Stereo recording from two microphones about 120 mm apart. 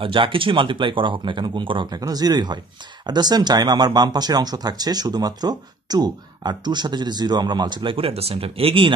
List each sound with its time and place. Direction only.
0.0 s speech: 45° right (ahead or behind)